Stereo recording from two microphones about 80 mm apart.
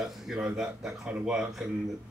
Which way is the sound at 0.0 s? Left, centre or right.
Centre.